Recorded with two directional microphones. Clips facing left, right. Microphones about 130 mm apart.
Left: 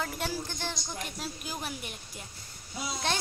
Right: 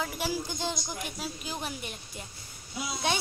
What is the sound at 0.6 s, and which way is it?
Speech, 15° right (ahead or behind).